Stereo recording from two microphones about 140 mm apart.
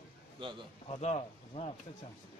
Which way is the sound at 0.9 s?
50° left (ahead or behind).